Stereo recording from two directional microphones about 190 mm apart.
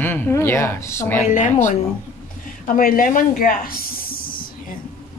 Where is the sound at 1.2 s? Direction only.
40° left (ahead or behind).